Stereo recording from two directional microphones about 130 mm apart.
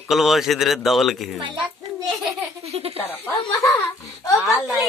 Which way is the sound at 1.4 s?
35° right (ahead or behind).